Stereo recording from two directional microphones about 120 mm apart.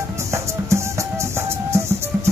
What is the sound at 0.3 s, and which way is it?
Music, 25° right (ahead or behind).